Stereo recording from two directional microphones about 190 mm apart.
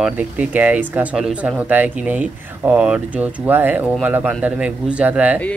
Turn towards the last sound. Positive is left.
turn(degrees=-5)  # may be behind; listen again after turning